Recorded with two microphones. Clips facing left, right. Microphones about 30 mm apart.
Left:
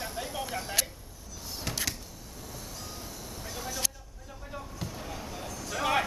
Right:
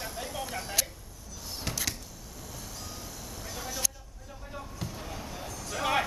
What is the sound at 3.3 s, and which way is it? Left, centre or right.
Vehicle, centre.